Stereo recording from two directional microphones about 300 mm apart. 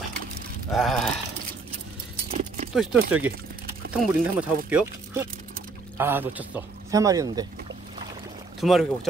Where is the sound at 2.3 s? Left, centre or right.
Right.